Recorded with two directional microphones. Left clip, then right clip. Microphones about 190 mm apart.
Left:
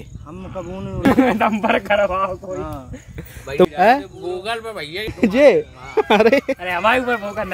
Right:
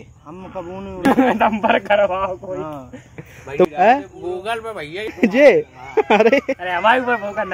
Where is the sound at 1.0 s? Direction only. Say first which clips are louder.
Right 1 dB; 15° left (ahead or behind).